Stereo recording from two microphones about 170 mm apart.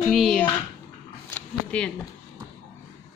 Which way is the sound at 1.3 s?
5° left (ahead or behind).